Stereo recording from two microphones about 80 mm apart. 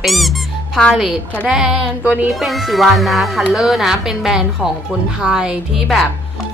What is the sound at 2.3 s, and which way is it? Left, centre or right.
A woman's voice, centre.